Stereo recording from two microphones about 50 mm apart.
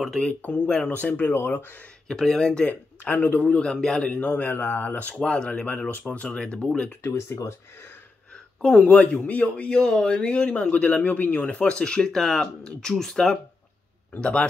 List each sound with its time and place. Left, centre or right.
0.3 s a man's voice: left
1.5 s speech: left
2.0 s speech: centre
2.7 s speech: left
3.4 s speech: centre
4.2 s a man's voice: left
7.0 s speech: left
8.5 s speech: centre
8.9 s a man's voice: left
11.1 s speech: left
11.4 s speech: left
14.2 s a man's voice: centre